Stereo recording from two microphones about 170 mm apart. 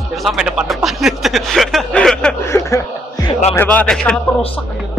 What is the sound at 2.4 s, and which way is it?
Speech, 15° left (ahead or behind).